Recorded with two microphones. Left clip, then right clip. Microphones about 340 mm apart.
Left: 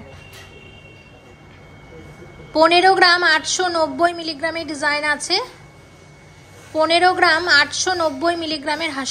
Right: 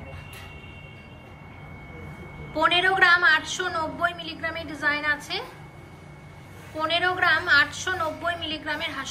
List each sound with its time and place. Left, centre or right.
2.5 s a woman's voice: centre
6.8 s a woman's voice: centre